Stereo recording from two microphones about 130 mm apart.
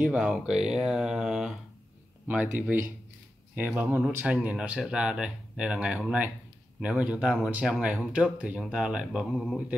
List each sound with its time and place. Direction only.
0.0 s speech: 5° right (ahead or behind)